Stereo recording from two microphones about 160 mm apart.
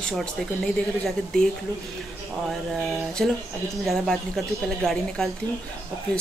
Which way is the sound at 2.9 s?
Centre (ahead or behind).